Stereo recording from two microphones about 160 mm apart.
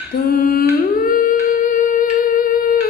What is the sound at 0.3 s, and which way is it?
Humming, 65° left (ahead or behind).